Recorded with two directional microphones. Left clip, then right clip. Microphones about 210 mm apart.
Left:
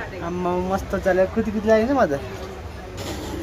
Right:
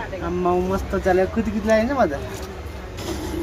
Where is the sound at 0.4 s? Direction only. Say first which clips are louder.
Right 2 dB; 20° left (ahead or behind).